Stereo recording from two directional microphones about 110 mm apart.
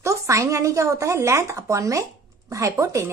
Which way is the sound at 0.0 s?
30° right (ahead or behind).